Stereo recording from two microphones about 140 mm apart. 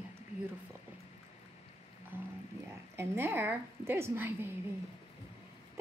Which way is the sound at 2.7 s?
20° right (ahead or behind).